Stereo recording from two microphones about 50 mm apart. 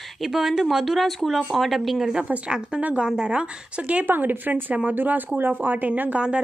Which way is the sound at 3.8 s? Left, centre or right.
Right.